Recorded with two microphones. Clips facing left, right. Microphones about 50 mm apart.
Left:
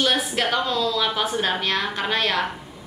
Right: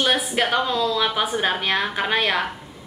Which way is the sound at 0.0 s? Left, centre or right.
Centre.